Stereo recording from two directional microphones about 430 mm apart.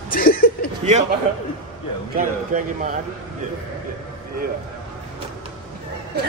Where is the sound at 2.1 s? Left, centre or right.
Centre.